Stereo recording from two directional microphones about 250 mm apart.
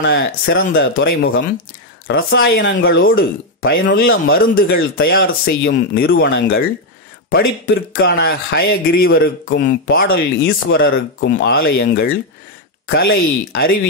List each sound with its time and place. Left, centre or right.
0.0 s speech: left